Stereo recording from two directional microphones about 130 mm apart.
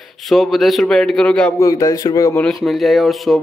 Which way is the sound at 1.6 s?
25° left (ahead or behind).